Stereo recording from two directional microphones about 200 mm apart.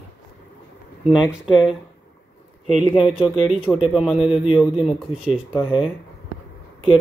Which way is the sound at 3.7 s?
Centre (ahead or behind).